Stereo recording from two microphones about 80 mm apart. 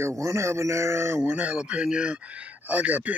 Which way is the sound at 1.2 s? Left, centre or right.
Centre.